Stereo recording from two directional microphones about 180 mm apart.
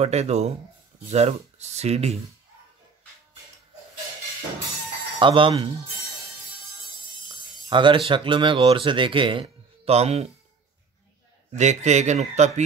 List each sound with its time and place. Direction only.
0.0 s speech: 35° right (ahead or behind)
5.2 s speech: 30° right (ahead or behind)
7.2 s a sound: 25° right (ahead or behind)
8.1 s speech: 30° right (ahead or behind)
11.5 s speech: 40° right (ahead or behind)